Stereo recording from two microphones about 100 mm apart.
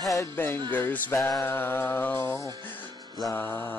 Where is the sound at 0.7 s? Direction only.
20° left (ahead or behind).